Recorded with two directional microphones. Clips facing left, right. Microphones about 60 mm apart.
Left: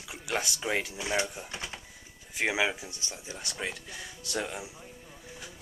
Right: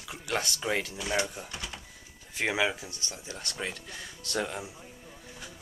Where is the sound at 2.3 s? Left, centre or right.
Centre.